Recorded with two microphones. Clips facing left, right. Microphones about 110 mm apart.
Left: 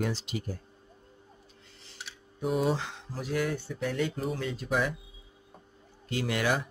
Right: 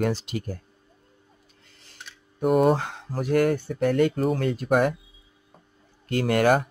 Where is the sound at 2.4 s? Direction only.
50° right (ahead or behind).